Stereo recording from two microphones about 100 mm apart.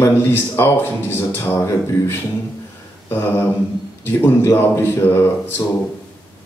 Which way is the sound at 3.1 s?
25° left (ahead or behind).